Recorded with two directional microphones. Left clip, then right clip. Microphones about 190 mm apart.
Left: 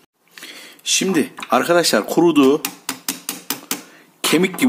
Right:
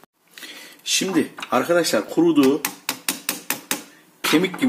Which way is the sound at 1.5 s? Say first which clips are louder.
Left 4 dB; 40° left (ahead or behind).